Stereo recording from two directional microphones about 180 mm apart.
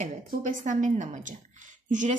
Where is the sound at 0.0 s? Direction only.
45° right (ahead or behind).